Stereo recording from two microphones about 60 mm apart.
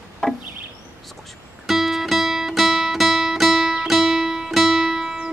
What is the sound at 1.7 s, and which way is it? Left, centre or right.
Music, centre.